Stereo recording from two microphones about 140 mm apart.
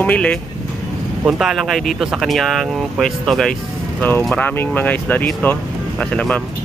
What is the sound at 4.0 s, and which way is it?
Speech, 15° left (ahead or behind).